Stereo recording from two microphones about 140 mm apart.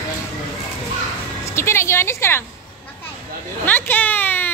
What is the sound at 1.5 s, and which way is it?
Speech, 20° left (ahead or behind).